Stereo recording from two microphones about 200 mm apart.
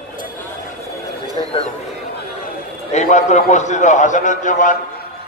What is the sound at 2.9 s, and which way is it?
A man's voice, 35° left (ahead or behind).